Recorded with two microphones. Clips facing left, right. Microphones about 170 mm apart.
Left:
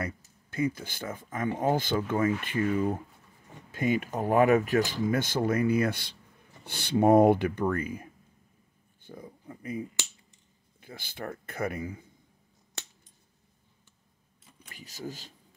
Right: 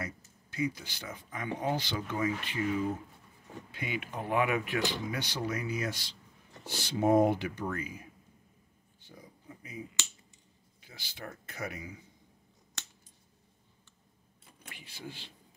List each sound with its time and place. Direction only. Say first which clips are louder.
0.0 s speech: left 5 dB; 55° left (ahead or behind)
9.0 s a sound: left 7 dB; 55° left (ahead or behind)
10.8 s speech: left 7 dB; 55° left (ahead or behind)
14.7 s speech: left 6 dB; 40° left (ahead or behind)